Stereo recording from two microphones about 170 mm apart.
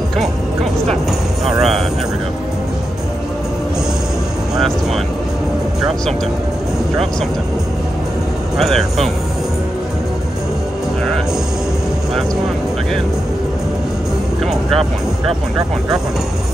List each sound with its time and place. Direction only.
1.4 s speech: centre (ahead or behind)
4.6 s speech: centre (ahead or behind)
8.5 s speech: centre (ahead or behind)
14.4 s speech: centre (ahead or behind)